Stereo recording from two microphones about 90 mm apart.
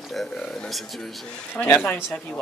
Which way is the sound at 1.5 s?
20° left (ahead or behind).